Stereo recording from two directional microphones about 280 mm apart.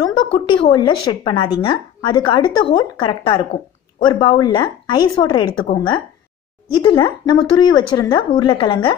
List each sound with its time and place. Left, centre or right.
0.0 s speech: centre